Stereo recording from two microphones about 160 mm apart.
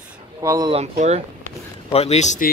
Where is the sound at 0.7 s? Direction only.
45° right (ahead or behind).